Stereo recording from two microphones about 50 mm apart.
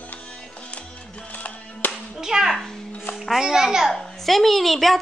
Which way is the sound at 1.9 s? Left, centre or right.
Centre.